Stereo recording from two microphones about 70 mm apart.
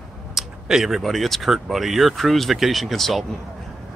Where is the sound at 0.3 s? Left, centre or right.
Centre.